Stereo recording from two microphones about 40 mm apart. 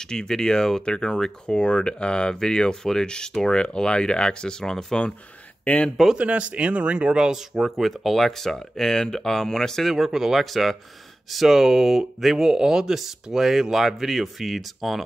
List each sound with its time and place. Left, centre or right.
0.0 s speech: centre
6.1 s speech: right
7.2 s speech: centre
7.7 s speech: centre
9.8 s speech: centre
10.4 s speech: centre